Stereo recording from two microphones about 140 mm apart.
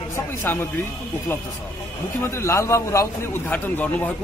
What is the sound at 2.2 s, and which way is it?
A man's voice, 20° left (ahead or behind).